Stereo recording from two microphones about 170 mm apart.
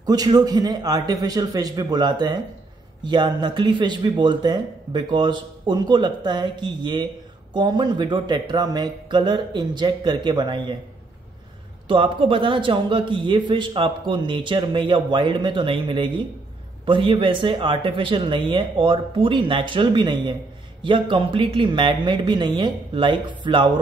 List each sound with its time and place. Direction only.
0.0 s a man's voice: 25° right (ahead or behind)
11.9 s a man's voice: 30° right (ahead or behind)